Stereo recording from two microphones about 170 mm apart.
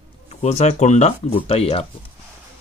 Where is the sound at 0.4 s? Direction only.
40° left (ahead or behind).